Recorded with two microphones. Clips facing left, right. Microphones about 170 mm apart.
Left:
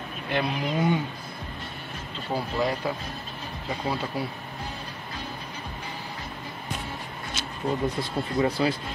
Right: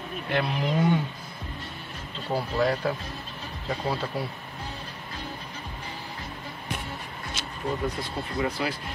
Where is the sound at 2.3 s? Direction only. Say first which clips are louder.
Right 1 dB; 10° left (ahead or behind).